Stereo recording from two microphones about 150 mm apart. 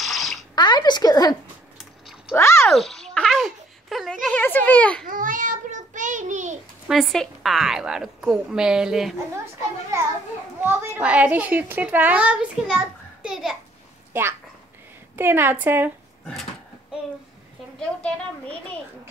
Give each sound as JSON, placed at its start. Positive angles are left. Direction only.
{"t": 0.0, "sound": "bathtub", "side_deg": 0}
{"t": 0.6, "sound": "speech", "side_deg": 30}
{"t": 2.3, "sound": "a sound", "side_deg": 15}
{"t": 2.6, "sound": "babbling", "side_deg": 0}
{"t": 5.0, "sound": "child singing", "side_deg": -65}
{"t": 6.9, "sound": "a woman's voice", "side_deg": 0}
{"t": 10.6, "sound": "a child's voice", "side_deg": -10}
{"t": 14.1, "sound": "a child's voice", "side_deg": -15}
{"t": 17.7, "sound": "a woman's voice", "side_deg": 5}